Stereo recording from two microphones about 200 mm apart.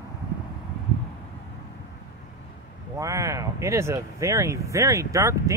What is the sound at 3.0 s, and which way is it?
Speech, 15° right (ahead or behind).